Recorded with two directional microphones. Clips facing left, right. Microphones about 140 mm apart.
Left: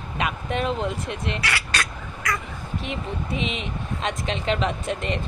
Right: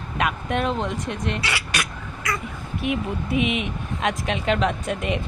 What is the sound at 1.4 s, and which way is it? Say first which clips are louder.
Speech: even; 20° right (ahead or behind).